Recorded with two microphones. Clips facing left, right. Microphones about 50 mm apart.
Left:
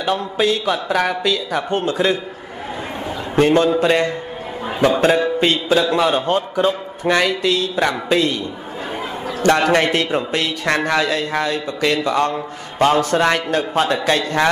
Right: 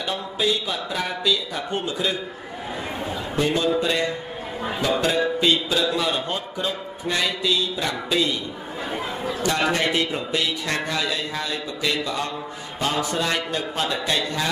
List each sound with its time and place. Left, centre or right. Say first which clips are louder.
0.0 s speech: left 6 dB; left
3.3 s a man's voice: left 8 dB; left
5.4 s a man's voice: left 5 dB; left